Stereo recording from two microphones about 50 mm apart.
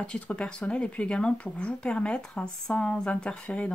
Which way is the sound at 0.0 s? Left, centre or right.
Left.